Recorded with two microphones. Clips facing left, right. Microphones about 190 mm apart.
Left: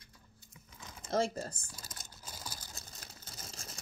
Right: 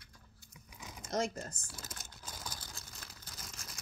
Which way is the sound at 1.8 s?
15° left (ahead or behind).